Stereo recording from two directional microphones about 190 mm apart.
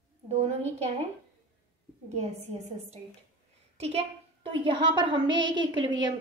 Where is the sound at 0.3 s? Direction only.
35° right (ahead or behind).